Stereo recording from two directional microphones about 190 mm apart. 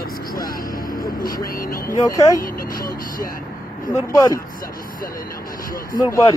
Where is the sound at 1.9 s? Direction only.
15° left (ahead or behind).